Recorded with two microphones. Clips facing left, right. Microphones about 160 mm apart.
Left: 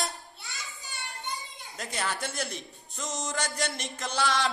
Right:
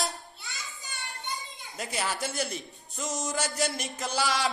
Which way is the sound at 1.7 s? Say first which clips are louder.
Right 1 dB; 5° right (ahead or behind).